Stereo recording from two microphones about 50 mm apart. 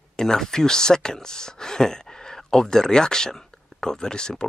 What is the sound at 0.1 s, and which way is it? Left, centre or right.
Speech, centre.